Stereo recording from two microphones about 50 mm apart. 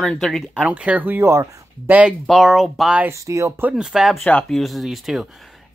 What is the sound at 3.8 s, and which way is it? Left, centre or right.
Speech, centre.